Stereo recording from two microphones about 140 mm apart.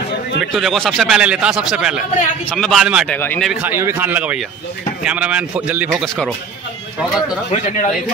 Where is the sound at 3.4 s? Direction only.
5° right (ahead or behind).